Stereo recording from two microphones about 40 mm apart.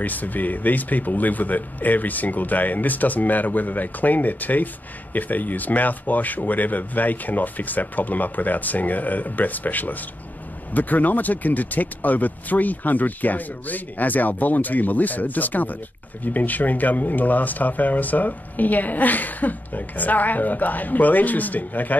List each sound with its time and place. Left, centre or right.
0.0 s speech: left